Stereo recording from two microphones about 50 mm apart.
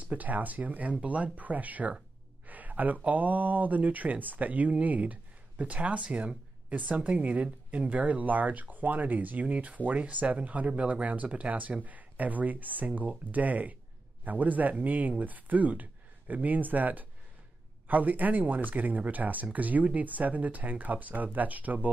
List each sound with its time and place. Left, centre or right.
0.0 s speech: right